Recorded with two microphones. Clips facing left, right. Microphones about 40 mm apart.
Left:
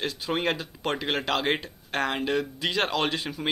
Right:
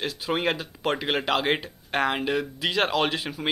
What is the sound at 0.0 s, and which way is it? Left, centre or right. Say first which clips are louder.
Speech: right 1 dB; centre.